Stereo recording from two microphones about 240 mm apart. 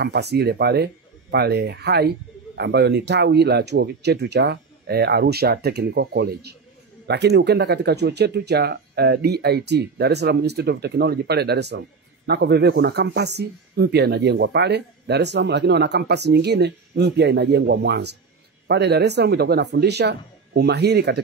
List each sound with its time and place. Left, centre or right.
0.0 s speech: right